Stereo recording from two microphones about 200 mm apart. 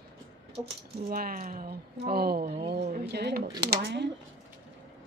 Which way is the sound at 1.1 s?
45° right (ahead or behind).